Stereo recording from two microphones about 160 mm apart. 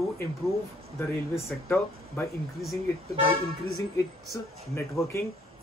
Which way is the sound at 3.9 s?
20° left (ahead or behind).